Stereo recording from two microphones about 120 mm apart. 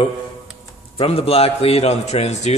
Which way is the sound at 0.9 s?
55° left (ahead or behind).